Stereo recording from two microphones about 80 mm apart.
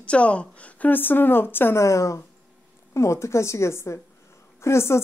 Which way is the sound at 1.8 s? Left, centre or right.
Left.